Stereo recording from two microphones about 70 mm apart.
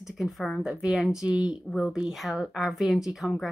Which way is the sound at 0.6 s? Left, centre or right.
Centre.